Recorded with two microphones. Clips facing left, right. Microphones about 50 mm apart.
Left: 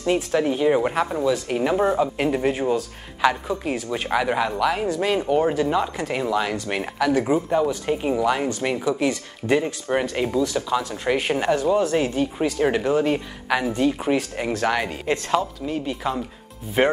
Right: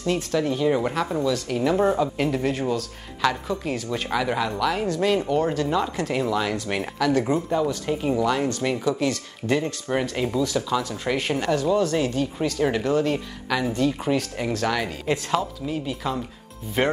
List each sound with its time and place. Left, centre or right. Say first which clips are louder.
0.0 s speech: left 3 dB; left